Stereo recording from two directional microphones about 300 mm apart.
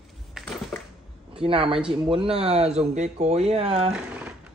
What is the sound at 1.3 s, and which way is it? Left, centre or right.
A woman's voice, centre.